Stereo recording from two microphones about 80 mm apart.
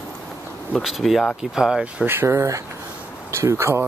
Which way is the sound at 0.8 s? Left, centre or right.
Centre.